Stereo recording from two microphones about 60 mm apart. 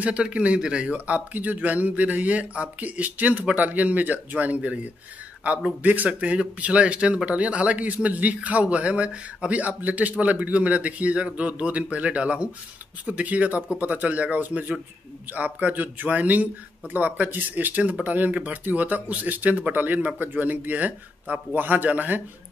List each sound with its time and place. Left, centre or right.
0.0 s a man's voice: right
0.9 s a man's voice: right